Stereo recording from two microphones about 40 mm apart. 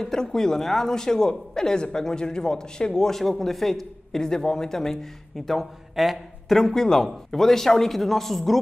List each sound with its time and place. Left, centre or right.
0.0 s a man's voice: centre
4.2 s a man's voice: centre
6.6 s a man's voice: centre